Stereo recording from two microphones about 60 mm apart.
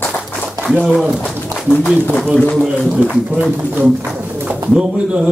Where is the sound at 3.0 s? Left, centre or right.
Right.